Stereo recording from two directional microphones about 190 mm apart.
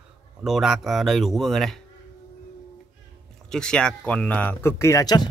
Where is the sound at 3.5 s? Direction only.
5° left (ahead or behind); by 5.2 s 20° left (ahead or behind).